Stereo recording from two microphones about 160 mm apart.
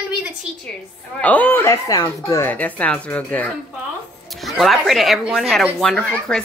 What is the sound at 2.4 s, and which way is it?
Speech, 10° left (ahead or behind).